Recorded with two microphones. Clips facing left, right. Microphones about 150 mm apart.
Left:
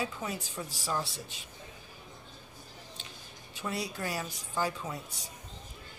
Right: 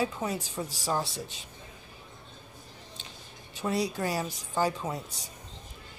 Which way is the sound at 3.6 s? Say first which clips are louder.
Right 6 dB; 30° right (ahead or behind).